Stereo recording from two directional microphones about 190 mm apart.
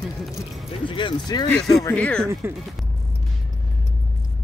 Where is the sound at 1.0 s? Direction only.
25° left (ahead or behind).